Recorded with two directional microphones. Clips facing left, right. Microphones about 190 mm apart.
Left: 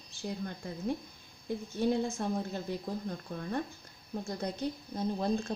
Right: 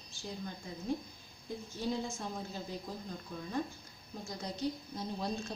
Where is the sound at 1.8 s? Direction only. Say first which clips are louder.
Left 7 dB; 60° left (ahead or behind).